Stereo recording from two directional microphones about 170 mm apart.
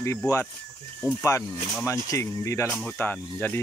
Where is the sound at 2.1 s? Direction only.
15° left (ahead or behind).